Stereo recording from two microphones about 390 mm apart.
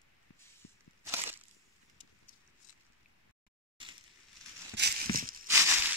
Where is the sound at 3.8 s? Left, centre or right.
Centre.